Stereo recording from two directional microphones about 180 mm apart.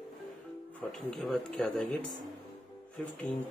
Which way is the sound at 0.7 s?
5° left (ahead or behind).